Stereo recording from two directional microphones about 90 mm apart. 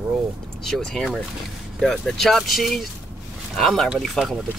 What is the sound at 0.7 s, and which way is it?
Speech, 5° left (ahead or behind).